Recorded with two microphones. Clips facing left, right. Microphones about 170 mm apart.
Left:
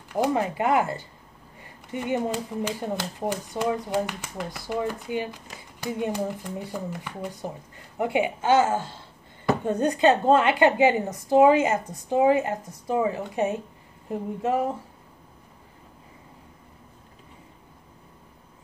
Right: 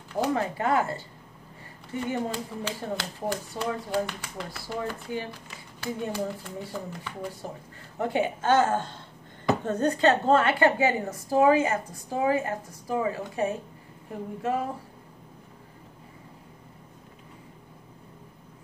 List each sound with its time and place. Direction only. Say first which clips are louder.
0.1 s a woman's voice: left 3 dB; 15° left (ahead or behind)